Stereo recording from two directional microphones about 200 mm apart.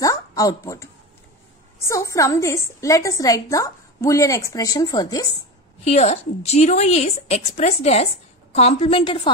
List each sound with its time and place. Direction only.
0.0 s a woman's voice: 15° left (ahead or behind)
5.9 s a woman's voice: 35° left (ahead or behind)